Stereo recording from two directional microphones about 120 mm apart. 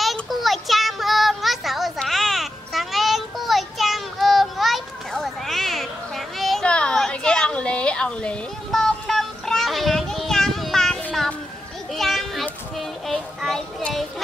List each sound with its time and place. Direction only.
0.0 s child singing: centre (ahead or behind)
11.9 s children playing: centre (ahead or behind)
12.7 s a sound: centre (ahead or behind)